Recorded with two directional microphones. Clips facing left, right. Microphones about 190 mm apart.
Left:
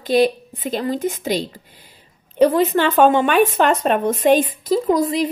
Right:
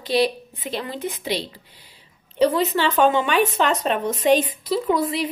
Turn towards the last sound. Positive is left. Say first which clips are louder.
# left 4 dB
turn(degrees=40)  # may be behind; listen again after turning